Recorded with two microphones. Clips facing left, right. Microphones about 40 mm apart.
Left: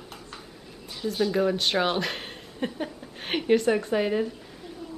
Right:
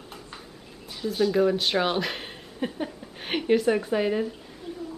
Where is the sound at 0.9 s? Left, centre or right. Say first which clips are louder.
Right 2 dB; centre.